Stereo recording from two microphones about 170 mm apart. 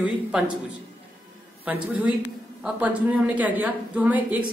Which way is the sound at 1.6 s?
10° right (ahead or behind).